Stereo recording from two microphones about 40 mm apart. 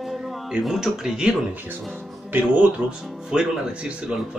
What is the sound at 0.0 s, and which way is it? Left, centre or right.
Music, centre.